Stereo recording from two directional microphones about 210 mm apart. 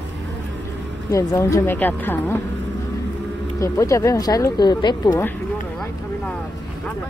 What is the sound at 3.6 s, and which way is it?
Speech, 15° left (ahead or behind).